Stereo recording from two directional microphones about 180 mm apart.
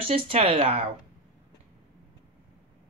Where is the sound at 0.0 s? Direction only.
35° right (ahead or behind).